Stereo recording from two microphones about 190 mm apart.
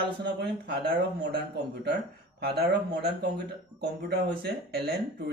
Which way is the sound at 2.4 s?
55° right (ahead or behind).